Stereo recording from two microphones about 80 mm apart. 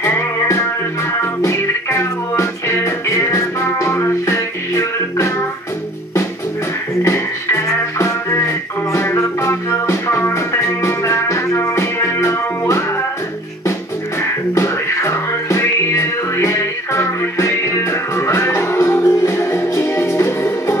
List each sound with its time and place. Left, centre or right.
0.0 s music: left
7.0 s music: left
14.2 s music: left